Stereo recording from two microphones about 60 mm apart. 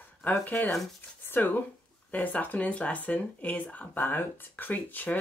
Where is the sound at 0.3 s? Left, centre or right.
Left.